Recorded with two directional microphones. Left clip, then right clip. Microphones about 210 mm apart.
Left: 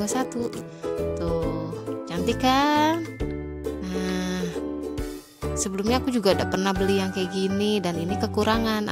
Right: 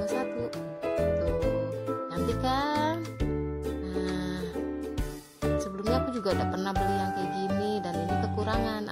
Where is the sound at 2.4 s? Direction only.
45° left (ahead or behind).